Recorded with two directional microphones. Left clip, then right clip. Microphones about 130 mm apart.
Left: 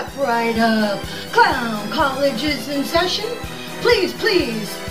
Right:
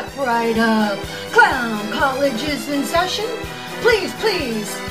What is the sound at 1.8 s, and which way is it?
Speech, centre (ahead or behind).